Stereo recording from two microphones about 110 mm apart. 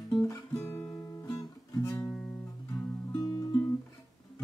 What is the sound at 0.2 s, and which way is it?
Guitar, 25° left (ahead or behind).